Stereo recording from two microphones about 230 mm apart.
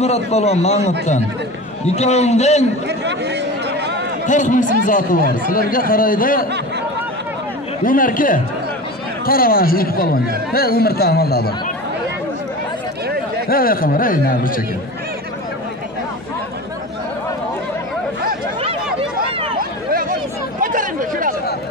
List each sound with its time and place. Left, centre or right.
0.0 s a man's voice: left
2.9 s speech: right
4.3 s speech: left
7.8 s speech: left
13.5 s speech: left
19.9 s a sound: right
20.6 s chatter: right